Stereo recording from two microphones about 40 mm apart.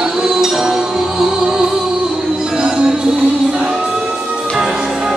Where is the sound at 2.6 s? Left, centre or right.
Right.